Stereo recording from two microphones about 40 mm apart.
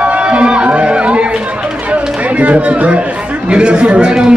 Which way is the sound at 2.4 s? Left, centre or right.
Right.